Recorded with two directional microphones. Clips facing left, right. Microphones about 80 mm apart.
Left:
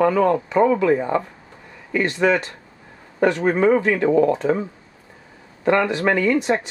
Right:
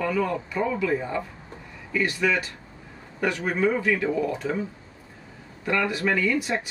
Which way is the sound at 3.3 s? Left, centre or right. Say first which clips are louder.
Left 7 dB; left.